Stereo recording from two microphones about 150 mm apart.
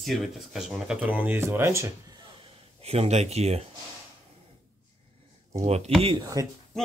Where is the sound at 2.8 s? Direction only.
45° right (ahead or behind).